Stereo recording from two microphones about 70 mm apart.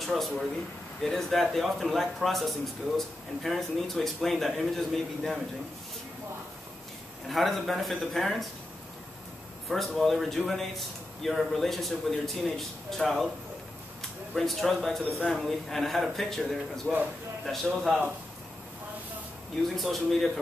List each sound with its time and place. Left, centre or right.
0.0 s a man's voice: centre
7.2 s a man's voice: centre
9.7 s a man's voice: centre
14.3 s a man's voice: centre
17.8 s a man's voice: centre
19.8 s a man's voice: centre